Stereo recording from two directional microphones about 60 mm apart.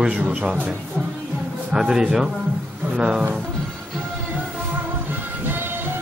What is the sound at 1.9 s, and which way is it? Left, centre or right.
A man's voice, centre.